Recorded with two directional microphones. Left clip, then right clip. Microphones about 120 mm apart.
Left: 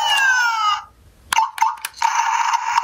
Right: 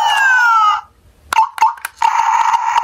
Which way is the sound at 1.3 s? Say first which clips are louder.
Right 5 dB; 35° right (ahead or behind).